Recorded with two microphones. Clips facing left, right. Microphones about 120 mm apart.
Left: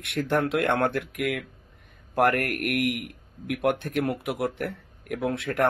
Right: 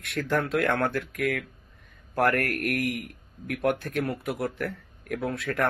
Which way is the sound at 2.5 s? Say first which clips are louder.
Left 2 dB; 30° right (ahead or behind).